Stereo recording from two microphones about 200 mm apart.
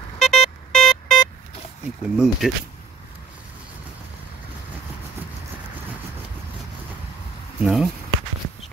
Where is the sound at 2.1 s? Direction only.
Centre (ahead or behind).